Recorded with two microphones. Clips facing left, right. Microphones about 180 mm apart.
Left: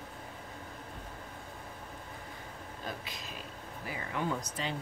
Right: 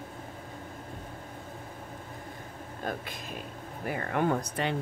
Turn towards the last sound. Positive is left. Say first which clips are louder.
# right 7 dB
turn(degrees=-60)  # may be behind; listen again after turning